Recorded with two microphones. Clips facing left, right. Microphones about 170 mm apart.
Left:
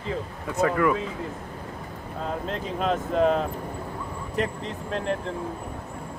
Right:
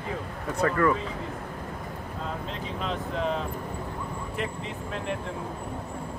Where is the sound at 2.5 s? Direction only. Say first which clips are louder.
Left 9 dB; 45° left (ahead or behind).